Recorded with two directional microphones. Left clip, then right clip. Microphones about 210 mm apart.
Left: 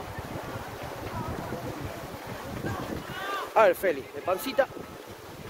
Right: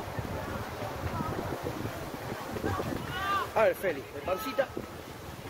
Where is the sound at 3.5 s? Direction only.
50° left (ahead or behind).